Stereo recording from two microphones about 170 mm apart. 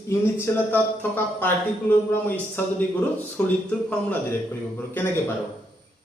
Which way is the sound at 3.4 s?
10° left (ahead or behind).